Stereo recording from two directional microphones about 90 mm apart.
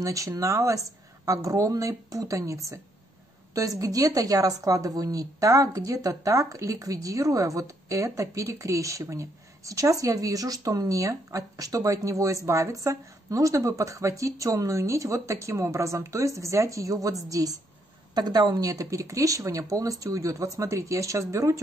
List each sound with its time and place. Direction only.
0.0 s a woman's voice: 40° right (ahead or behind)
18.1 s a woman's voice: 50° right (ahead or behind); by 21.5 s 35° right (ahead or behind)